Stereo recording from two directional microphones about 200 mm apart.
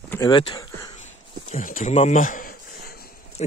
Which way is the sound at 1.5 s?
40° left (ahead or behind).